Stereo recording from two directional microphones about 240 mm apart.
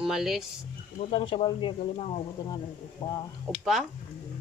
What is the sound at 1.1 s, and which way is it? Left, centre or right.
Speech, left.